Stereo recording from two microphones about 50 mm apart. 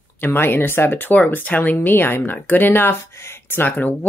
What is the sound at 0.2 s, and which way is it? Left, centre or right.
Speech, left.